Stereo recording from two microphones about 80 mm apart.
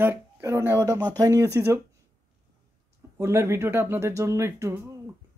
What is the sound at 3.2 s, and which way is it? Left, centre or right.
Speech, right.